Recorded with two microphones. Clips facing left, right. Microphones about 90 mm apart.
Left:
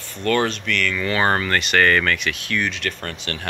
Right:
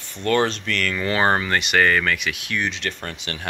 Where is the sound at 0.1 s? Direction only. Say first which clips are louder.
Even; 25° right (ahead or behind).